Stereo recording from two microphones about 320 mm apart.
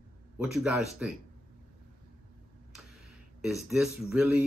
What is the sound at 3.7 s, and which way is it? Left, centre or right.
Speech, centre.